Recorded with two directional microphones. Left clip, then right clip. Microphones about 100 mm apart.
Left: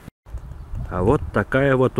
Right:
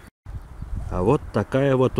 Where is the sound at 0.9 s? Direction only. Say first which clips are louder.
Left 2 dB; 15° right (ahead or behind).